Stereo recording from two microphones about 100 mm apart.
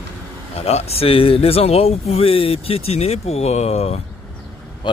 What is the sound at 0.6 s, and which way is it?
Speech, 90° left.